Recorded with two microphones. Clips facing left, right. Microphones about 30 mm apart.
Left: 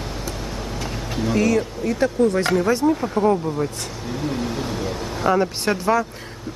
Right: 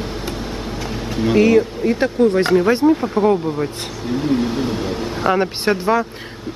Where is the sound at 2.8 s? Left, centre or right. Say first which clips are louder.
Right 4 dB; centre.